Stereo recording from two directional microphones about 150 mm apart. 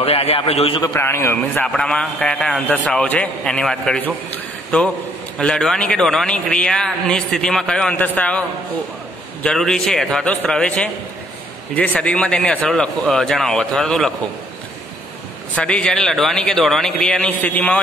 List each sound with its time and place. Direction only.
0.0 s a man's voice: 40° left (ahead or behind)
0.8 s a man's voice: 15° left (ahead or behind)
15.5 s a man's voice: 5° left (ahead or behind)